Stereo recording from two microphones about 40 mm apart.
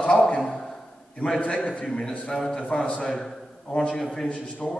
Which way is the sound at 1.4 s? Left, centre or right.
Left.